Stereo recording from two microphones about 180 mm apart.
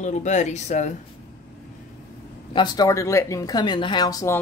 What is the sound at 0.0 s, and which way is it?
Speech, 40° left (ahead or behind).